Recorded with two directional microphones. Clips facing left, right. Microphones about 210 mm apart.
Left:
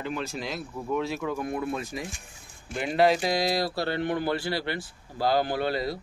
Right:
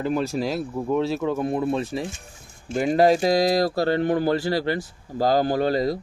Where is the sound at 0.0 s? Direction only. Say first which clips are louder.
Right 8 dB; 40° right (ahead or behind).